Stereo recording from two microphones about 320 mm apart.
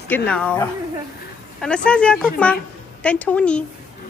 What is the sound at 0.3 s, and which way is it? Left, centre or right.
Speech, centre.